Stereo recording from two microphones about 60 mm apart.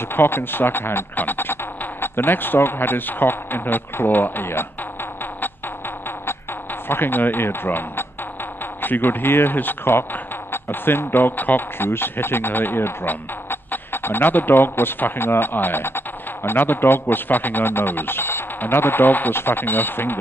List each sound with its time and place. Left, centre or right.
0.1 s speech: left
6.9 s speech: left